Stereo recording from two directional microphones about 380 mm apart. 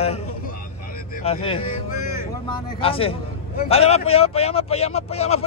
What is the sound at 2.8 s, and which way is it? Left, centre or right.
A man's voice, centre.